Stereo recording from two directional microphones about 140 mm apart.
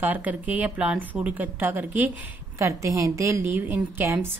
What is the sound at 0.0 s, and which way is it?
A woman's voice, 10° right (ahead or behind).